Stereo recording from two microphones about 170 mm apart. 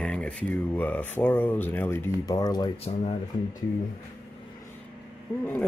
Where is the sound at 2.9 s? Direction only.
40° left (ahead or behind).